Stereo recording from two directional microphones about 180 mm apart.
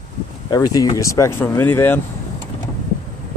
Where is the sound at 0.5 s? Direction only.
20° left (ahead or behind).